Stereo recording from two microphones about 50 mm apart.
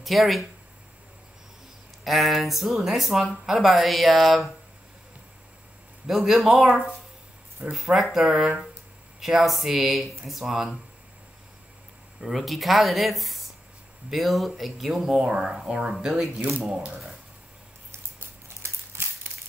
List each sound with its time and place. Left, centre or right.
0.0 s speech: centre
2.0 s speech: centre
6.0 s speech: centre
7.7 s speech: centre
12.2 s speech: centre
15.0 s speech: centre
18.6 s a sound: right